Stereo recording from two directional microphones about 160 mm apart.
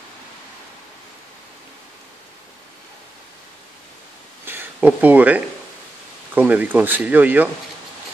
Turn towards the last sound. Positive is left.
turn(degrees=-10)  # may be behind; listen again after turning